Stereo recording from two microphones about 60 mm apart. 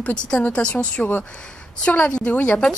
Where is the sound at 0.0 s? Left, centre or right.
Centre.